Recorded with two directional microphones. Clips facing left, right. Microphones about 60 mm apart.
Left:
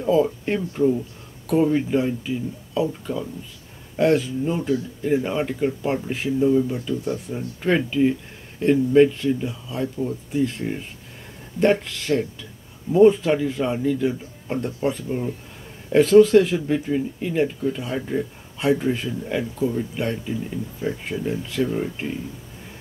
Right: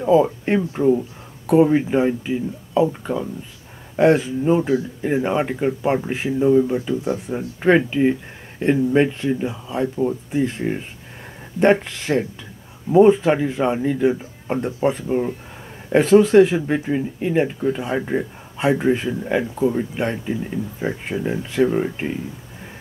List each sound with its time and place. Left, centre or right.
0.0 s speech: right